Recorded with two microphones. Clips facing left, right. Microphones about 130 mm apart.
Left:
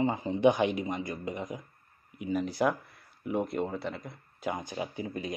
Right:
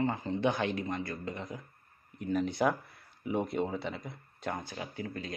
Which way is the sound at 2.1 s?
5° left (ahead or behind).